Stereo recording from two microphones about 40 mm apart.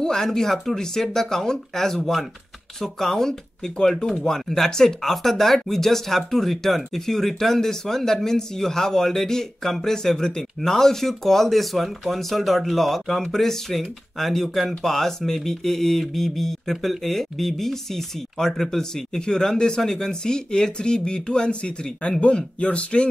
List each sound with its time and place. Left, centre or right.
0.0 s speech: centre; by 23.0 s left